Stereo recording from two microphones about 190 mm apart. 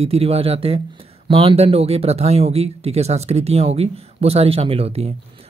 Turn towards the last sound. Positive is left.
turn(degrees=-30)  # may be behind; listen again after turning